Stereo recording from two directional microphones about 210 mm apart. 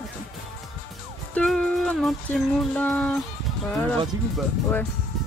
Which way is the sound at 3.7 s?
5° left (ahead or behind).